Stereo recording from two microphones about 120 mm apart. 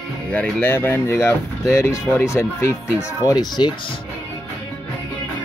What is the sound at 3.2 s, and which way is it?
Speech, 35° left (ahead or behind).